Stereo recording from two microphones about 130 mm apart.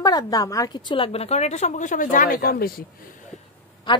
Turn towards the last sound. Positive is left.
turn(degrees=35)  # may be behind; listen again after turning